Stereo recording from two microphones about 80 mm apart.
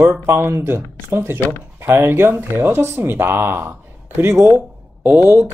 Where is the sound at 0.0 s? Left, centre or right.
Right.